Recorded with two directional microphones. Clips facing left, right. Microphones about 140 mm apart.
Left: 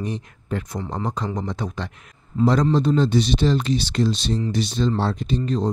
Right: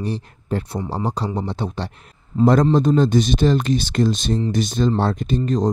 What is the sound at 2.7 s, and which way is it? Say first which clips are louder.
Speech: right 3 dB; 50° right (ahead or behind).